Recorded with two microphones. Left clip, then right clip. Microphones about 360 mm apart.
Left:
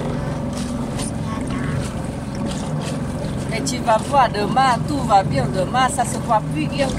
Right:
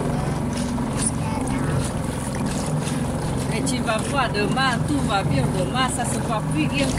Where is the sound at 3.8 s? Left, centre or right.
Centre.